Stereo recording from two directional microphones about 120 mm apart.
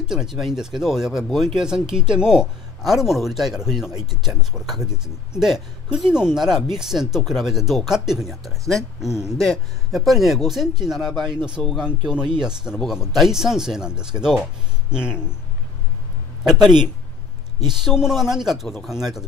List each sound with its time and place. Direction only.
0.0 s speech: 5° right (ahead or behind)
16.5 s speech: 35° right (ahead or behind)
17.8 s speech: 5° right (ahead or behind)